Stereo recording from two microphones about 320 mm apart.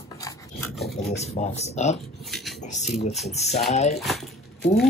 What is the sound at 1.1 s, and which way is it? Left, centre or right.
Speech, left.